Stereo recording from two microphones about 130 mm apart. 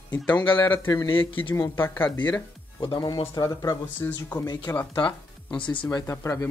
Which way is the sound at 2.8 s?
35° left (ahead or behind).